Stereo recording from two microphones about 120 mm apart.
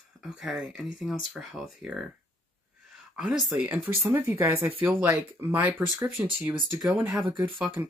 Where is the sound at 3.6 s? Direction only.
15° right (ahead or behind).